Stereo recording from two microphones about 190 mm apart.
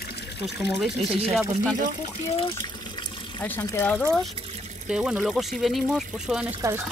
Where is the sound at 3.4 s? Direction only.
10° left (ahead or behind).